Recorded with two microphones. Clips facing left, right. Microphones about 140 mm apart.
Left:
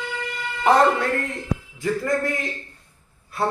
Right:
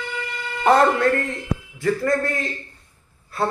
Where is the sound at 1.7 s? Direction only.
15° left (ahead or behind).